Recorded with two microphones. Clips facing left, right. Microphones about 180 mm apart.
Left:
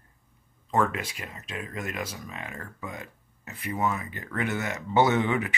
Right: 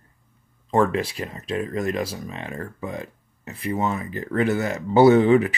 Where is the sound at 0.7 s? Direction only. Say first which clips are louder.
Right 6 dB; 30° right (ahead or behind).